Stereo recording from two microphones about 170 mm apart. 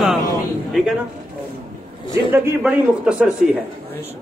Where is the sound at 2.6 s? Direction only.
5° right (ahead or behind).